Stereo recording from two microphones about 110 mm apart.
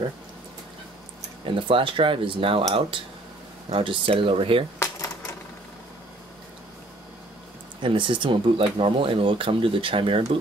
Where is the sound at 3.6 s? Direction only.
55° right (ahead or behind).